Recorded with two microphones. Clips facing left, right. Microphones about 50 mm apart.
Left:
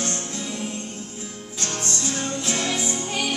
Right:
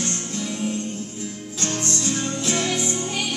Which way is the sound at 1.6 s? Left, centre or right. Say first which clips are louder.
Right 2 dB; centre.